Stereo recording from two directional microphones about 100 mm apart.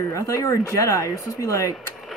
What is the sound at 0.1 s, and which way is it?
Speech, 35° left (ahead or behind).